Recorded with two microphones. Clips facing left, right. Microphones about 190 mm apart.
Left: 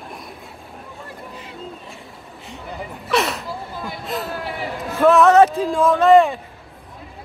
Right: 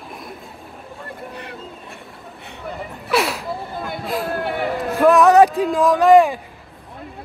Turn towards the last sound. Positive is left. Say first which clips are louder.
# right 1 dB
turn(degrees=-15)  # may be behind; listen again after turning